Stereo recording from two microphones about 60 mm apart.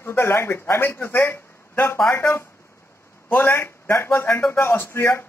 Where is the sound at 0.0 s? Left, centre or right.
Left.